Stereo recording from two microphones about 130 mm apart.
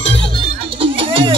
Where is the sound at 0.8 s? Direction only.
45° right (ahead or behind).